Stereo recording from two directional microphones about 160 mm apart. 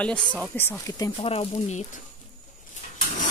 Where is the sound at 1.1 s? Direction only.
35° left (ahead or behind).